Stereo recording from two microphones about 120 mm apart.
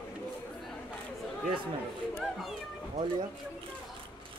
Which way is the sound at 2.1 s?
Centre (ahead or behind).